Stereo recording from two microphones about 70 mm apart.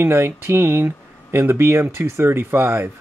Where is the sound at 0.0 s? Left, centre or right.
Right.